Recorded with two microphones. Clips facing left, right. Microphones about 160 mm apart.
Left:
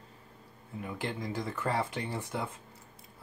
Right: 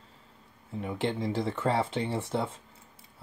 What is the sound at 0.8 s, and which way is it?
Speech, 25° right (ahead or behind).